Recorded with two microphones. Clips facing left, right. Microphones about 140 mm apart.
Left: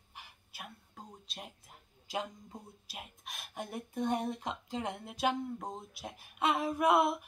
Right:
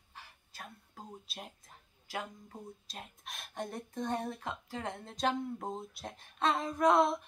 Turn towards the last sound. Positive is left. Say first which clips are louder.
# right 1 dB
turn(degrees=10)  # may be behind; listen again after turning